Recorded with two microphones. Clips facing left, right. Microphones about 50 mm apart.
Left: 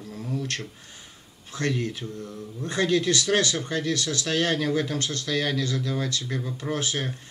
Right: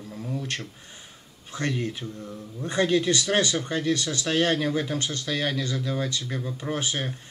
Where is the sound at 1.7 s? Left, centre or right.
Centre.